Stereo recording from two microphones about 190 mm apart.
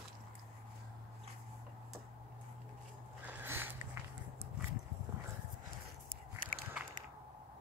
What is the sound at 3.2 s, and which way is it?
Biting, 10° right (ahead or behind).